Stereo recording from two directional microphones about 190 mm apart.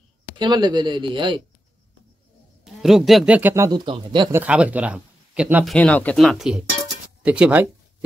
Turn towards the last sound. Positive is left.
turn(degrees=-5)  # may be behind; listen again after turning